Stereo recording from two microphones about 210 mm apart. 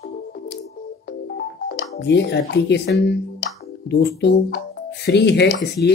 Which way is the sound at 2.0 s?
55° left (ahead or behind).